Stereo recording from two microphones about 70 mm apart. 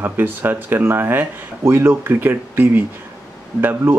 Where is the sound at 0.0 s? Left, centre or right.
Right.